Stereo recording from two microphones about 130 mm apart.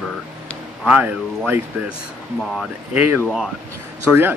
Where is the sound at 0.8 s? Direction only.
10° right (ahead or behind).